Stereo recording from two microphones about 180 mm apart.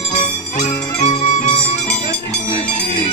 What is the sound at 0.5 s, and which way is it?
Jingle bell, 40° left (ahead or behind).